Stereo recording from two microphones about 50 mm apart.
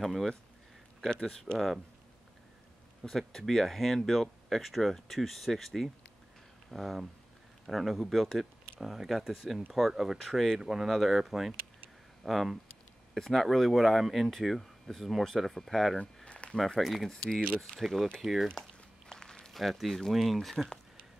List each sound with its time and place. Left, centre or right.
0.0 s speech: centre
1.1 s speech: centre
3.0 s speech: centre
16.3 s a sound: left
16.5 s speech: centre
17.1 s speech: centre
18.6 s walk: centre
19.5 s speech: centre